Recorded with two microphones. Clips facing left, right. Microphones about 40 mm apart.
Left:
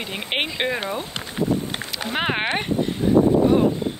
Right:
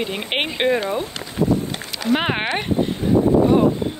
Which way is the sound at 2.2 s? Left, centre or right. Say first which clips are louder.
Left 2 dB; centre.